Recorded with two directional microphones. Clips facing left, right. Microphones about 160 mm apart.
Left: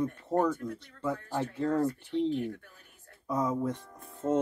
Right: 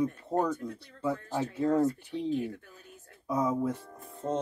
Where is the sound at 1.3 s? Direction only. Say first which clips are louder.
Right 1 dB; 5° right (ahead or behind).